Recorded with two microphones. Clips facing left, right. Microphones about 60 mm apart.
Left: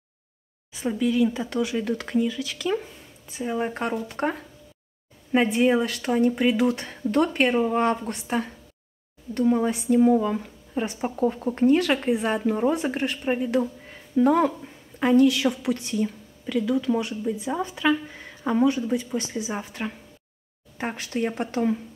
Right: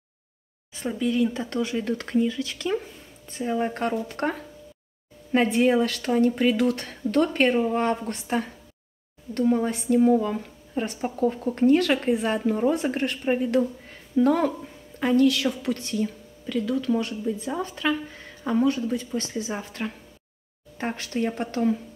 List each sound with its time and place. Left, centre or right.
1.3 s a woman's voice: centre